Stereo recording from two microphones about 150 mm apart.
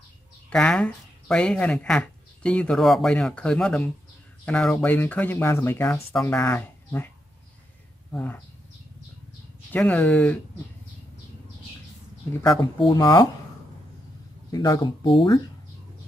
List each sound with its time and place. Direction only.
0.5 s speech: 5° left (ahead or behind)
8.1 s speech: 10° left (ahead or behind)
9.7 s speech: 10° left (ahead or behind)
12.7 s speech: 30° left (ahead or behind)
14.5 s speech: 25° left (ahead or behind)